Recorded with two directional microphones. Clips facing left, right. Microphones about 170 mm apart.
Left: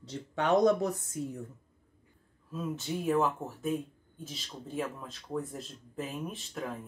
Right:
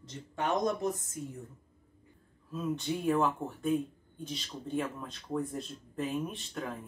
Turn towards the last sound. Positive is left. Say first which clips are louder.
# left 1 dB
turn(degrees=0)  # may be behind; listen again after turning